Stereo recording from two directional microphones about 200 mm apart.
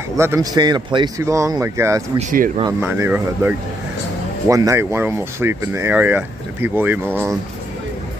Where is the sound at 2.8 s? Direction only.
10° right (ahead or behind).